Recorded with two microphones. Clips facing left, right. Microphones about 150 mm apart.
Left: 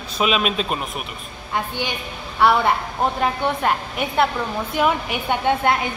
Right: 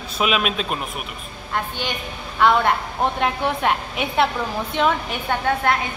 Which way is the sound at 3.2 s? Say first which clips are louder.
Even; centre (ahead or behind).